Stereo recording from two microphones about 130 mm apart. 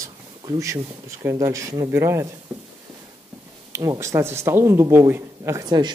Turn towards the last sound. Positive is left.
turn(degrees=-30)  # may be behind; listen again after turning